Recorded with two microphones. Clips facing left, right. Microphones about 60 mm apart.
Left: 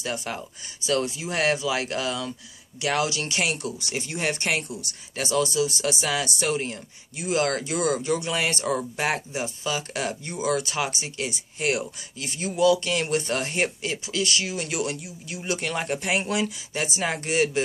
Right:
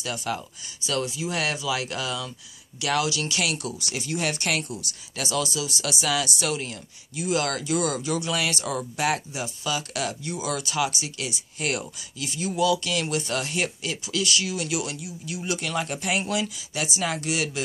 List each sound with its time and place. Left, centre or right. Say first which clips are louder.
0.0 s speech: right 1 dB; left
11.6 s speech: left 3 dB; centre
12.2 s speech: left 2 dB; left